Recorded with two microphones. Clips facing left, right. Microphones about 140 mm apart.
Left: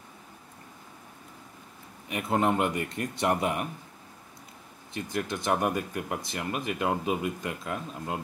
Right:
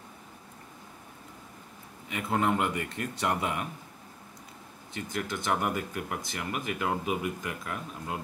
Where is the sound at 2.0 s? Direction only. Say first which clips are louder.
Left 2 dB; 20° left (ahead or behind).